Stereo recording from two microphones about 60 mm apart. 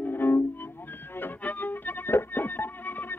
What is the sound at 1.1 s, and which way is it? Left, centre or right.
Violin, left.